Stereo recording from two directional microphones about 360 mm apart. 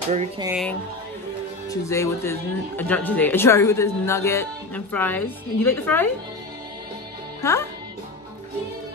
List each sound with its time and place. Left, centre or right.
0.1 s speech: centre
0.5 s speech: centre